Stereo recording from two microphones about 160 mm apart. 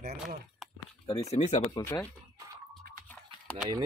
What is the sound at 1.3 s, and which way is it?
Speech, 45° left (ahead or behind).